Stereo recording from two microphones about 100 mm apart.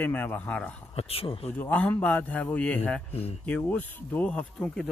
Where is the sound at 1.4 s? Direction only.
15° left (ahead or behind).